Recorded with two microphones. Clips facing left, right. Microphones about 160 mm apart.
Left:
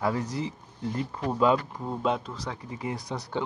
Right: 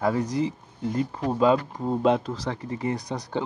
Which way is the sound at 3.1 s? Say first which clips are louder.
Right 2 dB; 45° right (ahead or behind).